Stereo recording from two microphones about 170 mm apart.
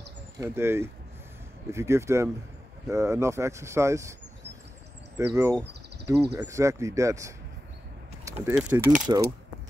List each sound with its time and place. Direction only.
0.4 s speech: 15° right (ahead or behind)
5.1 s speech: 15° right (ahead or behind)
8.5 s speech: 10° right (ahead or behind)
9.0 s speech: 25° right (ahead or behind)